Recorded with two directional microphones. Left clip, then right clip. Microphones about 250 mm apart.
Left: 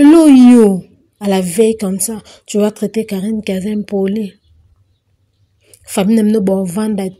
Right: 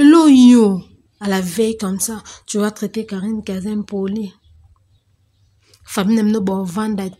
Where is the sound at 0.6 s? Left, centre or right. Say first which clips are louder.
Left 5 dB; centre.